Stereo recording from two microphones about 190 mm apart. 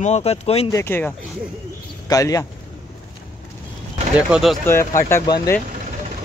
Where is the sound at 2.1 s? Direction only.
15° left (ahead or behind).